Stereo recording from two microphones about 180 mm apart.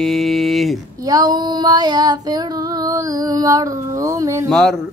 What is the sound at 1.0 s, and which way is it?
Female singing, 20° right (ahead or behind).